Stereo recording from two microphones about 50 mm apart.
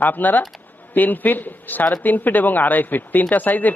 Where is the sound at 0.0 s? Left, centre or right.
Left.